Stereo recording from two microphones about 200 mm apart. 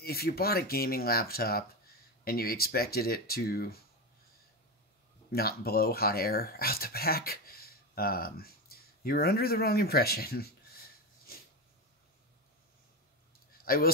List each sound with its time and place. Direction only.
0.0 s speech: 50° left (ahead or behind)
5.3 s speech: 50° left (ahead or behind)
13.7 s speech: 50° left (ahead or behind)